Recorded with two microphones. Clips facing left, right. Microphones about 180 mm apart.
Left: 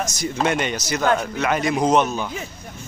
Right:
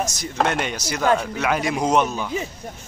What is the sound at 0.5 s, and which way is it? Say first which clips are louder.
Speech: left 2 dB; 5° right (ahead or behind).